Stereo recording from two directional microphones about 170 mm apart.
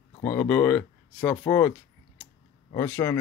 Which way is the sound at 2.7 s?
20° left (ahead or behind).